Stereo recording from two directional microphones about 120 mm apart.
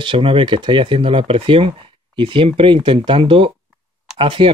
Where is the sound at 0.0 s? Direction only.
45° right (ahead or behind).